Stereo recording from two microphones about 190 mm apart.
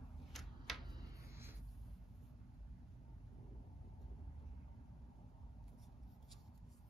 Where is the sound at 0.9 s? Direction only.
20° right (ahead or behind).